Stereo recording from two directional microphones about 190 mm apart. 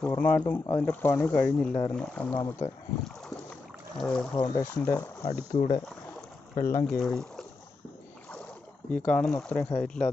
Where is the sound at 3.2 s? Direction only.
5° left (ahead or behind).